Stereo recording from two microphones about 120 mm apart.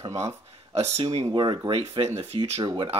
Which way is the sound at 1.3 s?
40° right (ahead or behind).